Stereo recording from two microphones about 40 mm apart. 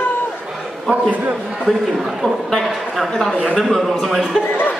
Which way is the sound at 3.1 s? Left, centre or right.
Centre.